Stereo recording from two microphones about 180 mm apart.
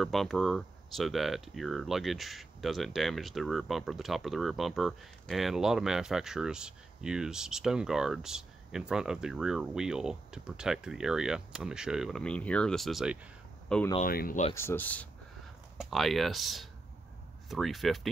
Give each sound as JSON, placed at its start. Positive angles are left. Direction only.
{"t": 0.0, "sound": "speech", "side_deg": 0}
{"t": 14.0, "sound": "speech", "side_deg": 50}
{"t": 14.5, "sound": "speech", "side_deg": 15}